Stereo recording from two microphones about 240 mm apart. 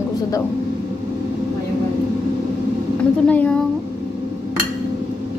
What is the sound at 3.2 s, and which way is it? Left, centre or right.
Speech, centre.